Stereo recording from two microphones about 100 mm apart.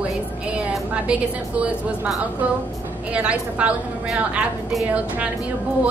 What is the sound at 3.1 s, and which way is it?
A woman's voice, 10° right (ahead or behind).